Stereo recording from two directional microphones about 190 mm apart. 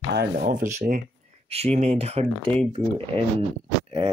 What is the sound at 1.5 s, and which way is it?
Speech, 35° right (ahead or behind).